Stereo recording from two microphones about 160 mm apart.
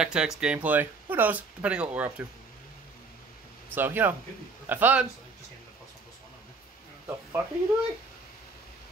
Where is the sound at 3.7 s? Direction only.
10° right (ahead or behind).